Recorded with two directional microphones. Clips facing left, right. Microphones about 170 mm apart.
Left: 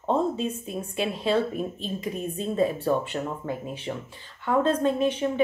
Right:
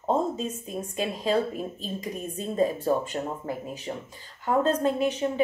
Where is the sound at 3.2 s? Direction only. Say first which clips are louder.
Left 1 dB; 30° right (ahead or behind).